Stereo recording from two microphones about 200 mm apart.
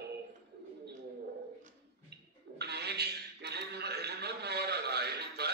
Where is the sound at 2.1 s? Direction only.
55° right (ahead or behind).